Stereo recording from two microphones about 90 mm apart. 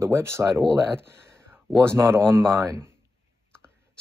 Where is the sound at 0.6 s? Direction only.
5° left (ahead or behind).